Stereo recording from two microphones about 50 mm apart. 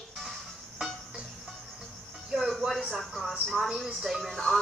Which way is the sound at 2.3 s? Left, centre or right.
Centre.